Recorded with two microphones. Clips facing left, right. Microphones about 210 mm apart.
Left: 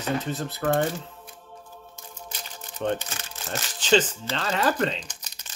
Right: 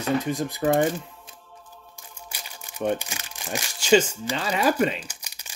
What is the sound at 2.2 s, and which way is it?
Speech, 10° right (ahead or behind).